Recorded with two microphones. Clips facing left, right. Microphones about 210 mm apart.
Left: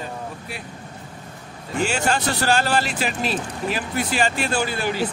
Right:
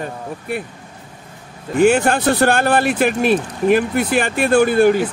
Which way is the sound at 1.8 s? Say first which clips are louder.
Right 9 dB; 55° right (ahead or behind).